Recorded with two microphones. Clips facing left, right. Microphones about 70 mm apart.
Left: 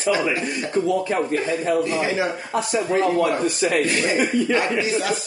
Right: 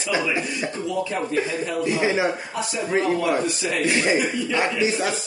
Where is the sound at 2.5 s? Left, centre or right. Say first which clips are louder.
Left 3 dB; left.